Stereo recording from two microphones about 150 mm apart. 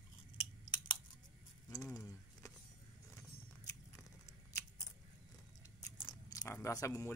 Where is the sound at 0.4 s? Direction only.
30° left (ahead or behind).